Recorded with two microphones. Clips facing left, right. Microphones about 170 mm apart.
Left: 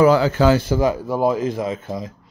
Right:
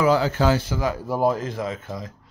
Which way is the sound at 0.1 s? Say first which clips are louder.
Left 4 dB; 90° left.